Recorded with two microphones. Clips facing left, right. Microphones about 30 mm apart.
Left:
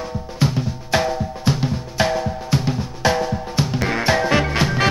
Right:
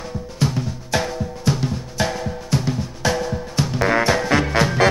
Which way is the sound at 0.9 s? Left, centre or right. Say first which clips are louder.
Left 3 dB; centre.